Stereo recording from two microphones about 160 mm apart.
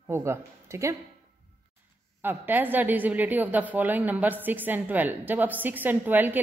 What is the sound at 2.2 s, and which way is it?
A woman's voice, 10° right (ahead or behind).